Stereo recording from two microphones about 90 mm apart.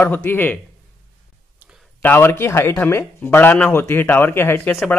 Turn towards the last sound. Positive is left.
turn(degrees=25)  # may be behind; listen again after turning